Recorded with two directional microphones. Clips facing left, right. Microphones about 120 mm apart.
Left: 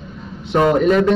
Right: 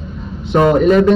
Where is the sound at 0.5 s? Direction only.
25° right (ahead or behind).